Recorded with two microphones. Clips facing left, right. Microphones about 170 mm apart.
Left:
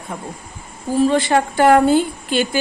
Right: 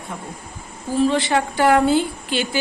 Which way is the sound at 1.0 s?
45° left (ahead or behind).